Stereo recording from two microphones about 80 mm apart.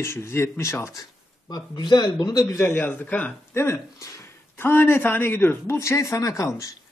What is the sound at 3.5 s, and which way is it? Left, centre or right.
Speech, left.